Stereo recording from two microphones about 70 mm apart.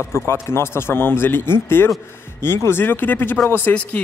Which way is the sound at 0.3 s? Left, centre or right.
Left.